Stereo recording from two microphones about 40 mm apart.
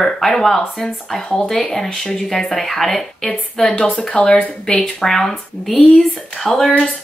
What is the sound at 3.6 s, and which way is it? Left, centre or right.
Speech, left.